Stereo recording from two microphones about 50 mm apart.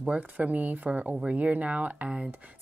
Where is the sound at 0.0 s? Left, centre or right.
Right.